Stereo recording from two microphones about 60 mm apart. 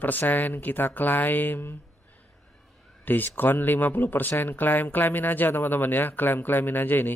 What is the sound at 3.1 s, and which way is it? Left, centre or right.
Speech, left.